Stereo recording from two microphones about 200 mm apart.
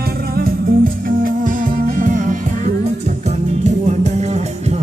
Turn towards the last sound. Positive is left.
turn(degrees=-35)  # may be behind; listen again after turning